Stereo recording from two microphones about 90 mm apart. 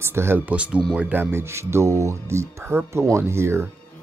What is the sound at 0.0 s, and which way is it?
Speech, 30° right (ahead or behind).